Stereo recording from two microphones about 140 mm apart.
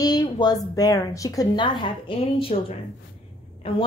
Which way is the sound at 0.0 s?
30° left (ahead or behind).